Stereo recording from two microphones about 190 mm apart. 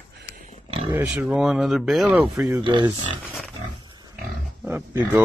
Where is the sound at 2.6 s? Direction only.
25° right (ahead or behind).